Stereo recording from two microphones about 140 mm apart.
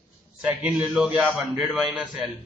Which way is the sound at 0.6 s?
10° right (ahead or behind).